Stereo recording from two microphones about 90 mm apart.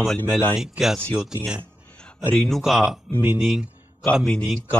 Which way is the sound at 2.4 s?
Centre (ahead or behind).